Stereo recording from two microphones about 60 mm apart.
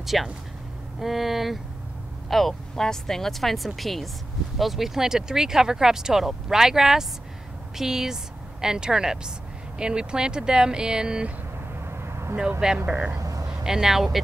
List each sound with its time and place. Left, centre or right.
0.0 s a woman's voice: centre
11.7 s vehicle: right
12.4 s speech: centre
13.2 s a sound: right
13.7 s a woman's voice: centre